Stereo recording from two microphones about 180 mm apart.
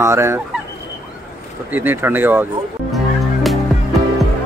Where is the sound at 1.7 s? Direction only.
10° right (ahead or behind).